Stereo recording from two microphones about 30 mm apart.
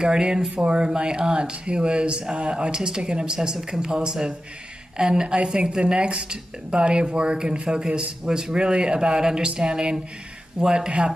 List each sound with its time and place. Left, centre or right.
0.0 s speech: right
3.5 s speech: centre
5.9 s speech: right